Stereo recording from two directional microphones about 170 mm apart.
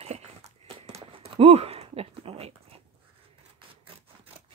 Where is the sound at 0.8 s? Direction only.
35° right (ahead or behind).